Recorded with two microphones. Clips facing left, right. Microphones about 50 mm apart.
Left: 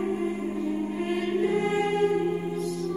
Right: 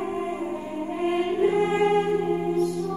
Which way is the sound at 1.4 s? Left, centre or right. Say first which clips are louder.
Right 4 dB; right.